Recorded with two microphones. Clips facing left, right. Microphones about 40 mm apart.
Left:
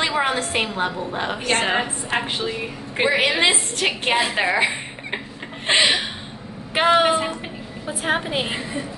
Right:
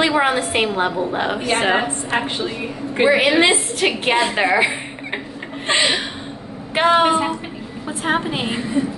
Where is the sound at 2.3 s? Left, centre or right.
Centre.